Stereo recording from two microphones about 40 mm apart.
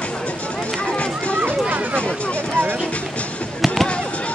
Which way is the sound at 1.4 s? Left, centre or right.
Right.